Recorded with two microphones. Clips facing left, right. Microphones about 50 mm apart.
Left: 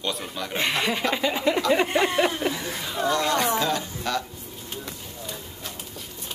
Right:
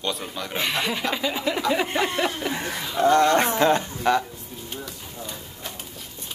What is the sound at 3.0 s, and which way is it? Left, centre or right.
Speech, right.